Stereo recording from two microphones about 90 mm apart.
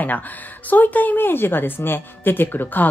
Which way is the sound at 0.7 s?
20° left (ahead or behind).